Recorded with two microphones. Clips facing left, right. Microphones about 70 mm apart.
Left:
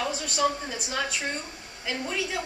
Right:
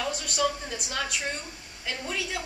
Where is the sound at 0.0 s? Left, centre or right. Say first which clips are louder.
Left 1 dB; centre.